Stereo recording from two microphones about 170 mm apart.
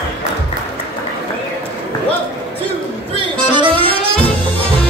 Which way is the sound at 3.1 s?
30° right (ahead or behind).